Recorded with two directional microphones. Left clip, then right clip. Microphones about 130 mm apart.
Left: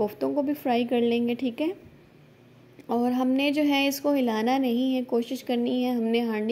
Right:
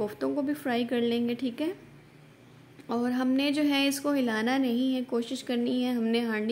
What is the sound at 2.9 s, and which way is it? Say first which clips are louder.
A woman's voice: left 3 dB; 25° left (ahead or behind).